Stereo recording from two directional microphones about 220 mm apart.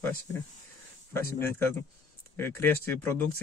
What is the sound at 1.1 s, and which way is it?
Speech, 10° left (ahead or behind).